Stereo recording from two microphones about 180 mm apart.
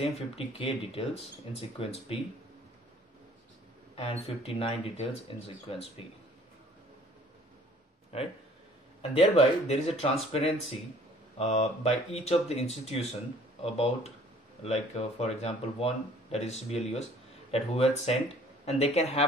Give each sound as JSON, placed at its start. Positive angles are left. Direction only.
{"t": 0.0, "sound": "speech", "side_deg": 30}
{"t": 3.9, "sound": "speech", "side_deg": 30}
{"t": 8.1, "sound": "speech", "side_deg": 35}